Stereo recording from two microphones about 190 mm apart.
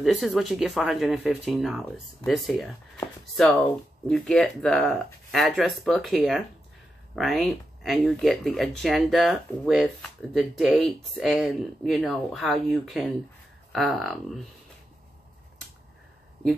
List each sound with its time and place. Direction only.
0.0 s speech: centre (ahead or behind)